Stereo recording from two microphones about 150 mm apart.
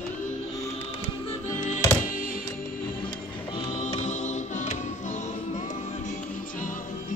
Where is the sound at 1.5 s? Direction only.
55° left (ahead or behind).